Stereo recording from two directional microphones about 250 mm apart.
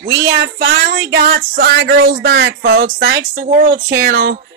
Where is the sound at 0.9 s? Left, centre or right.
Right.